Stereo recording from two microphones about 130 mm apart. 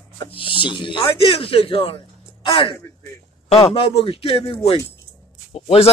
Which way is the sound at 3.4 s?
50° left (ahead or behind).